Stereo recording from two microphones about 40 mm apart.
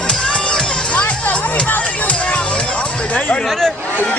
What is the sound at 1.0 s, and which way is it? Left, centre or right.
Music, left.